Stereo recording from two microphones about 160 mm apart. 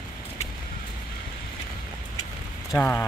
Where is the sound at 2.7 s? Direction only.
10° left (ahead or behind).